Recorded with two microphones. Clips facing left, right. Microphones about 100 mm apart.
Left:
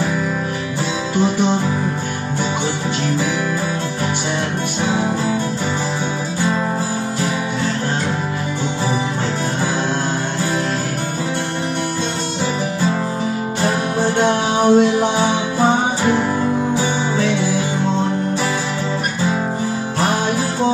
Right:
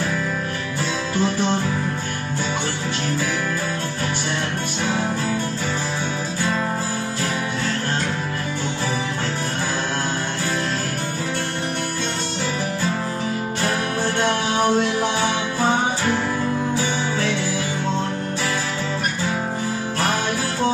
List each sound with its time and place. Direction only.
1.2 s music: 15° left (ahead or behind)
13.6 s music: 20° left (ahead or behind)